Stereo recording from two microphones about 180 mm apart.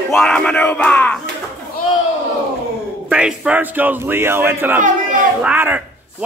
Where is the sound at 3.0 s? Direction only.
5° right (ahead or behind).